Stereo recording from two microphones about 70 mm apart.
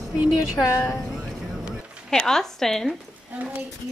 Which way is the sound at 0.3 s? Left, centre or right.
Centre.